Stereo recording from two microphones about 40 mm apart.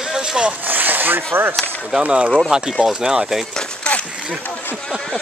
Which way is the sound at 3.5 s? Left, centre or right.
Centre.